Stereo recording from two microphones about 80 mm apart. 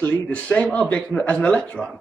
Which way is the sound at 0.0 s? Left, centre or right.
Centre.